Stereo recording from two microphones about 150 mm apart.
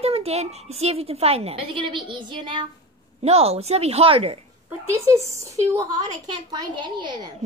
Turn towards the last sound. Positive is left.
turn(degrees=-30)  # may be behind; listen again after turning